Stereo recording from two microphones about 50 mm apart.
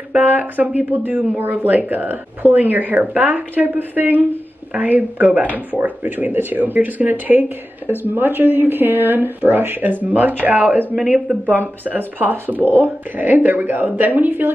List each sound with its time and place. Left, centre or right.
0.2 s speech: right